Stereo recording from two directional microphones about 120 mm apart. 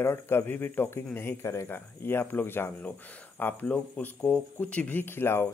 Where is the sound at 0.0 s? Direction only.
20° left (ahead or behind).